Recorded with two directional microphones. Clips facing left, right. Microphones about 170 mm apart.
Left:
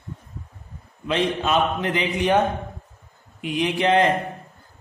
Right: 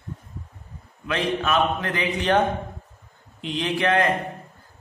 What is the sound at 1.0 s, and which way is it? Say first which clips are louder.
A man's voice: left 2 dB; 20° left (ahead or behind).